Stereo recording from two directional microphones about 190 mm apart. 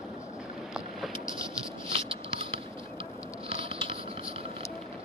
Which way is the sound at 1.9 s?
30° right (ahead or behind).